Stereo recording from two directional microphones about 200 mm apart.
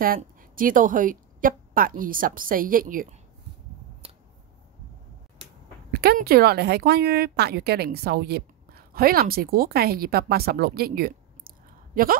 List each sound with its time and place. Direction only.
0.0 s a woman's voice: 45° right (ahead or behind)
4.0 s finger snapping: 30° right (ahead or behind)
5.9 s a woman's voice: 50° right (ahead or behind)